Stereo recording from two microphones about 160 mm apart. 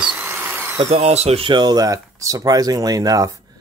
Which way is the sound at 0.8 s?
40° right (ahead or behind).